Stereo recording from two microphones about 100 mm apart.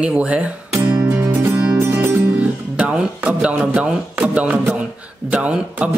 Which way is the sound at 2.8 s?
15° right (ahead or behind).